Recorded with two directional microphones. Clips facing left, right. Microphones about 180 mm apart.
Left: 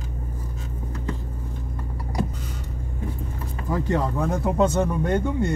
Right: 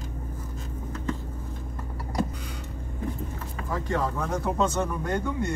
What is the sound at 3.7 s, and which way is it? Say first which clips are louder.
Speech: left 4 dB; 15° left (ahead or behind).